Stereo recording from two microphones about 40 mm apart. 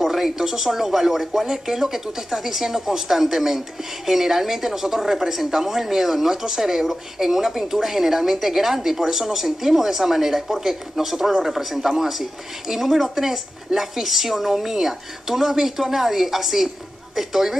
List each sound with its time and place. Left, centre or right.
0.0 s speech: centre